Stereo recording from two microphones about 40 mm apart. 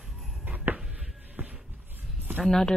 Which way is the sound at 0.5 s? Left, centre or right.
Right.